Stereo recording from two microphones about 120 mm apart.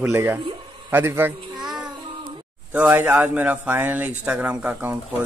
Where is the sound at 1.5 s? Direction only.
Centre (ahead or behind).